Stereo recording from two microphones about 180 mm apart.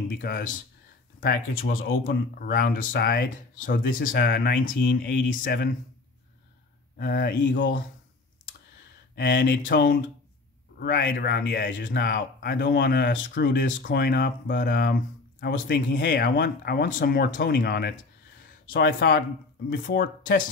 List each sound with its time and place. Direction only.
0.1 s speech: 60° left (ahead or behind)
5.3 s speech: 55° left (ahead or behind)
7.0 s speech: 60° left (ahead or behind)
9.1 s speech: 70° left (ahead or behind)
10.8 s speech: 65° left (ahead or behind)
16.4 s speech: 55° left (ahead or behind)